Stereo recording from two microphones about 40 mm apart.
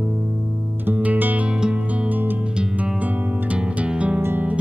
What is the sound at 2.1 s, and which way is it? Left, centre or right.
Music, right.